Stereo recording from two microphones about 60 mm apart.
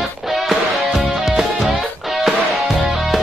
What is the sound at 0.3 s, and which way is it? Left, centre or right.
Music, centre.